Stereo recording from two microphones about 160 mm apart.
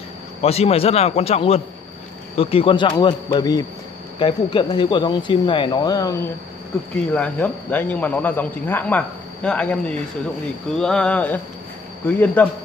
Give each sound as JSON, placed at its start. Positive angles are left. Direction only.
{"t": 0.4, "sound": "a man's voice", "side_deg": 40}
{"t": 7.2, "sound": "speech", "side_deg": 10}